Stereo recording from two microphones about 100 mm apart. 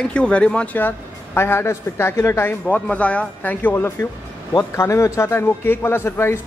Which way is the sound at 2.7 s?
10° left (ahead or behind).